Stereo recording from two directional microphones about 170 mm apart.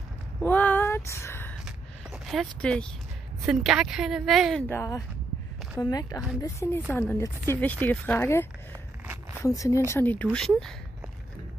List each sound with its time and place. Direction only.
0.4 s a sound: 10° left (ahead or behind)
1.6 s a sound: centre (ahead or behind)
3.4 s speech: 5° right (ahead or behind)
4.6 s speech: 15° left (ahead or behind)
9.0 s zipper: 10° right (ahead or behind)
9.4 s speech: 20° left (ahead or behind)